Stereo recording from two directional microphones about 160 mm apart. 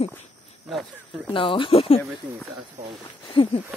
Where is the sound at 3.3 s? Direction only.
30° left (ahead or behind).